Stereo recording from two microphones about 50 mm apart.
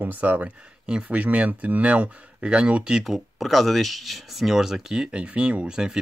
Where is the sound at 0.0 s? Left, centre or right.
Right; by 3.0 s centre.